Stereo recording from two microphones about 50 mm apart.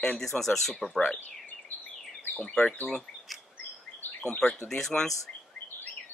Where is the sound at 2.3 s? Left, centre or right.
Left.